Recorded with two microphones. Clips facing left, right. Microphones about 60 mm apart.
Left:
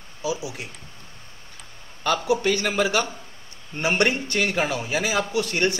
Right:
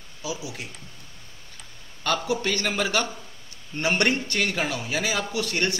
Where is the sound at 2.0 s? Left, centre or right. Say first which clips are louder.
Left 4 dB; centre.